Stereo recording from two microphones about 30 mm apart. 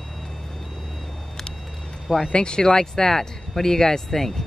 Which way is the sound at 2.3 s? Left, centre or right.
Left.